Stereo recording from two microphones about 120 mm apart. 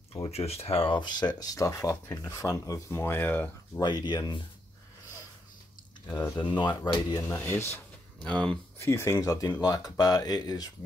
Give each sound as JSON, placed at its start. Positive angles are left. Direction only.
{"t": 0.3, "sound": "speech", "side_deg": 60}
{"t": 3.8, "sound": "speech", "side_deg": 35}
{"t": 6.0, "sound": "speech", "side_deg": 15}
{"t": 6.3, "sound": "speech", "side_deg": 40}
{"t": 8.2, "sound": "speech", "side_deg": 10}
{"t": 8.7, "sound": "speech", "side_deg": 25}